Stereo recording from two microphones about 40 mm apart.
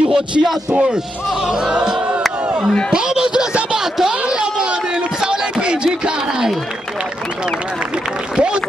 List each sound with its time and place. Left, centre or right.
0.1 s speech: centre
1.5 s music: centre
2.9 s speech: centre
4.0 s a sound: centre
5.2 s music: right
8.4 s a sound: right